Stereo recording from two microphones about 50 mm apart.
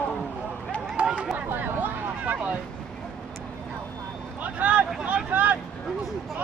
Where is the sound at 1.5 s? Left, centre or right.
Right.